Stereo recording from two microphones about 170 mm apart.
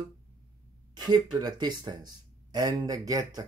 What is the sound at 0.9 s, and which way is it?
Speech, 25° right (ahead or behind).